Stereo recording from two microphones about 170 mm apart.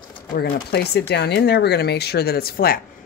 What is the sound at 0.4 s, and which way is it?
Speech, 80° left.